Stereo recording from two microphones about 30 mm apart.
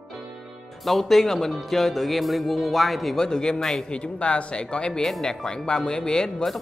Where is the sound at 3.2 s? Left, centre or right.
Left.